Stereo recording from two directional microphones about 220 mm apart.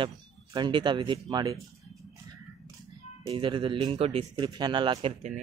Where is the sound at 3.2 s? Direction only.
25° right (ahead or behind).